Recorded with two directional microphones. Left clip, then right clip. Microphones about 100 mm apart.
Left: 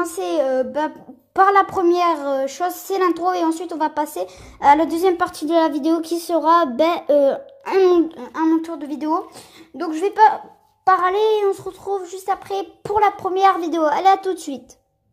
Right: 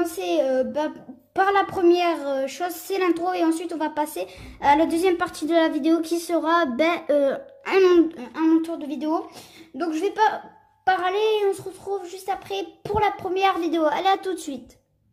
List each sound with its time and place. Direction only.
0.0 s speech: 35° left (ahead or behind); by 7.8 s 10° left (ahead or behind)
8.5 s speech: 45° left (ahead or behind)
9.8 s speech: 30° left (ahead or behind)